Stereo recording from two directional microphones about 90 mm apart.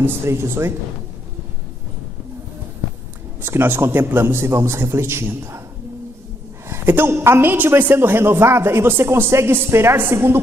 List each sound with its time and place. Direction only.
0.0 s a woman's voice: 30° right (ahead or behind)
3.4 s a woman's voice: 20° right (ahead or behind)
6.7 s a woman's voice: 25° right (ahead or behind)